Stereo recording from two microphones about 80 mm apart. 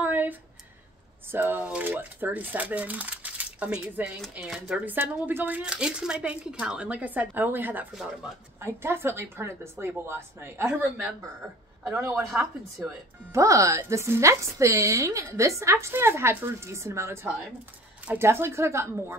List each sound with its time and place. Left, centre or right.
0.0 s a sound: right
1.3 s speech: right
4.8 s speech: right
5.7 s speech: centre
7.9 s speech: centre
8.5 s a woman's voice: right
12.0 s a woman's voice: right
13.3 s a woman's voice: right